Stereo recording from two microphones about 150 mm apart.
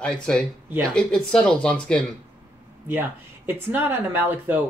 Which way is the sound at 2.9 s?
15° right (ahead or behind).